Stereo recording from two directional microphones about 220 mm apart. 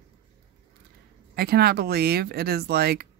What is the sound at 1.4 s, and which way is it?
Speech, 45° right (ahead or behind).